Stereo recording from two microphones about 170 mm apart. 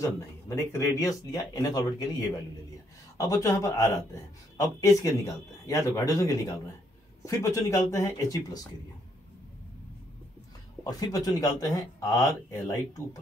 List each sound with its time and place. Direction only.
0.5 s a man's voice: 20° left (ahead or behind)
3.2 s a man's voice: 20° left (ahead or behind)
10.8 s a man's voice: 20° left (ahead or behind)